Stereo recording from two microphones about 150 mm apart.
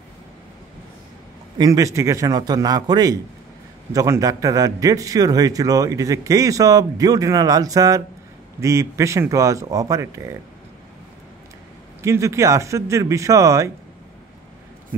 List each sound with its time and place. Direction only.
1.6 s a man's voice: 20° right (ahead or behind)
12.0 s a man's voice: 20° right (ahead or behind)